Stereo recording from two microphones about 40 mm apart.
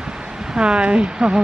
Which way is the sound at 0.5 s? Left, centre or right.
Right.